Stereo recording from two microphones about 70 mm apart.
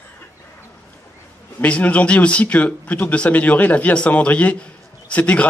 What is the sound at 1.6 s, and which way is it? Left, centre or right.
Speech, centre.